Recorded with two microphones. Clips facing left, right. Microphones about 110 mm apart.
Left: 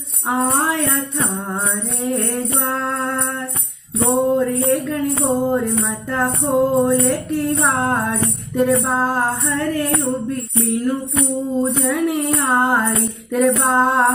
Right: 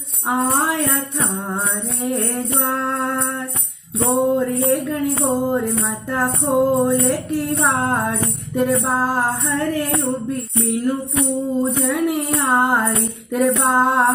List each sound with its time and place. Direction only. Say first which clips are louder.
0.4 s music: left 1 dB; centre (ahead or behind)
2.1 s music: left 1 dB; centre (ahead or behind)